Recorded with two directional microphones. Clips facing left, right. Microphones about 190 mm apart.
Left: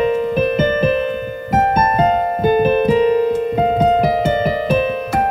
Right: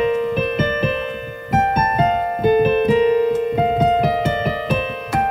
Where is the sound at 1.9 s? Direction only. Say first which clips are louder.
Left 3 dB; 35° left (ahead or behind).